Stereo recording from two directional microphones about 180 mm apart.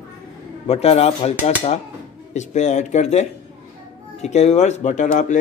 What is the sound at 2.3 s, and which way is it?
Speech, 40° left (ahead or behind).